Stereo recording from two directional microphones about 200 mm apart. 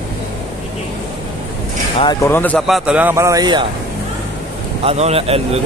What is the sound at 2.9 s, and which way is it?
Speech, 10° right (ahead or behind).